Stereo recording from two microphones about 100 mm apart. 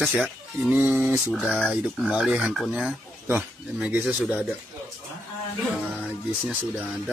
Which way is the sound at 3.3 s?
15° right (ahead or behind).